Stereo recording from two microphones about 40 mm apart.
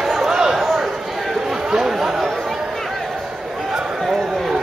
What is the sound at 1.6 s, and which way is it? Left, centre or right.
Chatter, centre.